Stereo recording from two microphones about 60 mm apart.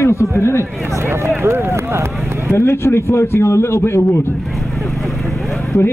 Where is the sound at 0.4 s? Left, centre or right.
Left.